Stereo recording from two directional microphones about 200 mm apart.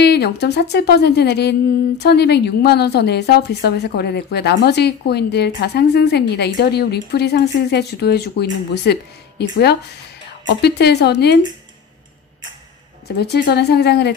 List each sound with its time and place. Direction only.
0.0 s speech: 55° left (ahead or behind)
10.6 s speech: 55° left (ahead or behind)
13.2 s speech: 55° left (ahead or behind)